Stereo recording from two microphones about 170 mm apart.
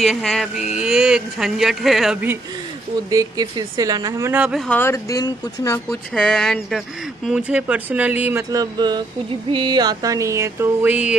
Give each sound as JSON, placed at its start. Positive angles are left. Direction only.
{"t": 0.0, "sound": "speech", "side_deg": 0}
{"t": 3.1, "sound": "speech", "side_deg": -20}
{"t": 4.6, "sound": "speech", "side_deg": 10}
{"t": 5.9, "sound": "speech", "side_deg": 5}